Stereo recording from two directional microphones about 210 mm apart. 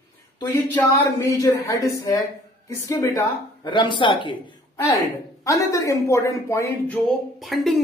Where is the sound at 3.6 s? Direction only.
25° left (ahead or behind).